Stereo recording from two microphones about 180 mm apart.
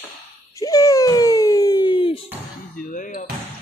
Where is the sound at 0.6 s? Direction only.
20° left (ahead or behind).